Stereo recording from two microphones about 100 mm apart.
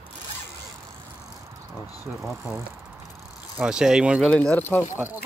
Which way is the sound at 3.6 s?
5° right (ahead or behind).